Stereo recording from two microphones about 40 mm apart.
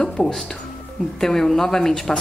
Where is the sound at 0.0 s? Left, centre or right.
Centre.